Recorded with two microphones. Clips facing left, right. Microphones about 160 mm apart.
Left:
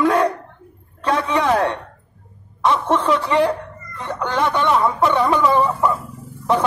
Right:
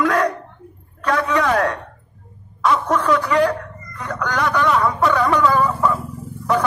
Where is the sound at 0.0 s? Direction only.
30° left (ahead or behind).